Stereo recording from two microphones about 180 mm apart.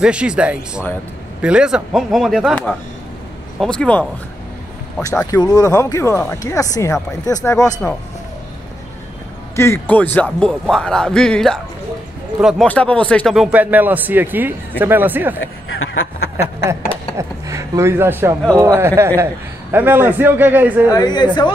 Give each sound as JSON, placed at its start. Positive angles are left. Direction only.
{"t": 0.0, "sound": "a man's voice", "side_deg": -5}
{"t": 5.2, "sound": "speech", "side_deg": 20}
{"t": 9.6, "sound": "a man's voice", "side_deg": 10}
{"t": 15.4, "sound": "speech", "side_deg": 90}
{"t": 17.2, "sound": "a man's voice", "side_deg": -15}
{"t": 20.9, "sound": "a woman's voice", "side_deg": 25}